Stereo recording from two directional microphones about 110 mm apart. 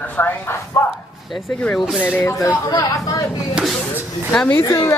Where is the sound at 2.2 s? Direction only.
25° left (ahead or behind).